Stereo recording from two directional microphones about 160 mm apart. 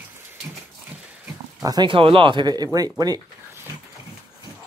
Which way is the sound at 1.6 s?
25° right (ahead or behind).